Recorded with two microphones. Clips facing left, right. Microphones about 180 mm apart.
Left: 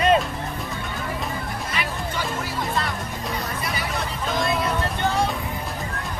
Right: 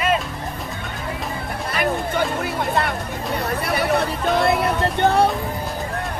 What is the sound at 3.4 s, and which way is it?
Hubbub, 65° right (ahead or behind).